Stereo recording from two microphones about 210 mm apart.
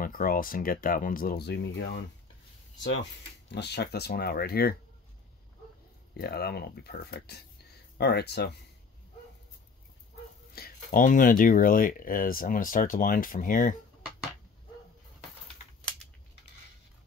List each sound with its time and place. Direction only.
0.0 s speech: 45° left (ahead or behind)
6.1 s speech: 50° left (ahead or behind)
10.5 s speech: 45° left (ahead or behind)